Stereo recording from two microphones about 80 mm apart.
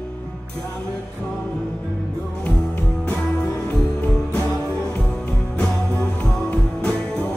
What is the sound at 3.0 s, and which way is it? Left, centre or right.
Music, left.